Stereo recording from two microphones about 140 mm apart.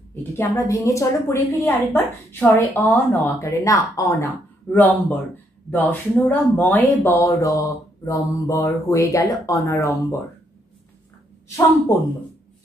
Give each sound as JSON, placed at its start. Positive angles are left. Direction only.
{"t": 0.1, "sound": "a woman's voice", "side_deg": 20}